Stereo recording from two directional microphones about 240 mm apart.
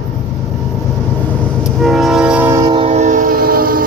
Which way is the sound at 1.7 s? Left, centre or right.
Centre.